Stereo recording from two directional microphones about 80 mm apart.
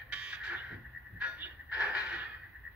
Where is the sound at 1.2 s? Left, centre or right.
Centre.